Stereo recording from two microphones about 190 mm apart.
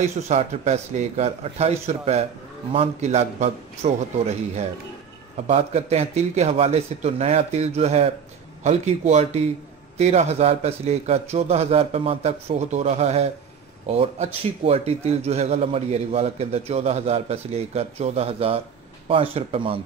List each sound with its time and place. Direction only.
0.3 s a man's voice: 35° right (ahead or behind)